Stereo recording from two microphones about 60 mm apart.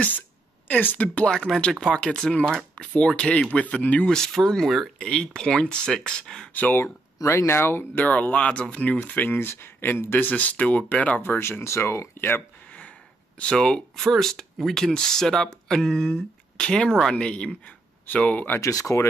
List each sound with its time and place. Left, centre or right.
0.7 s speech: left
1.0 s speech: centre
4.3 s speech: centre
4.9 s speech: centre
6.5 s speech: left
7.2 s speech: left
10.1 s speech: left
12.2 s speech: left
13.4 s speech: centre
18.6 s speech: left